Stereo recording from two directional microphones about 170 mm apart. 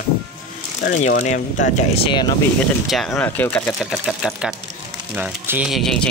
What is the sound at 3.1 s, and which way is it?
Speech, 15° left (ahead or behind).